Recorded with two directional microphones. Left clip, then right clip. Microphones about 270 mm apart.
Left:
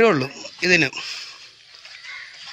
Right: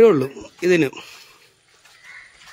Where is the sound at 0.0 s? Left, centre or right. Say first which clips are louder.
Right 4 dB; centre.